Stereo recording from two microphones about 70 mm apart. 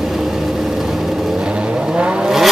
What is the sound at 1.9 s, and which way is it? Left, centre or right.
Vehicle, centre.